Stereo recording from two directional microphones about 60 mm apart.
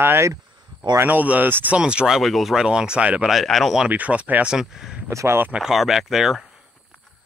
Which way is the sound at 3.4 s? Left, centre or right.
Centre.